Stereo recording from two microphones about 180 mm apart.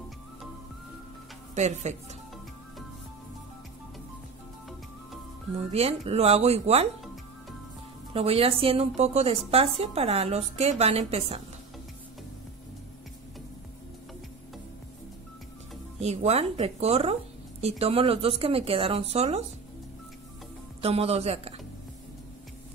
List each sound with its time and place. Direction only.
1.5 s speech: 40° right (ahead or behind)
5.7 s speech: 35° right (ahead or behind)
8.1 s speech: 35° right (ahead or behind)
16.0 s speech: 35° right (ahead or behind)
20.8 s speech: 35° right (ahead or behind)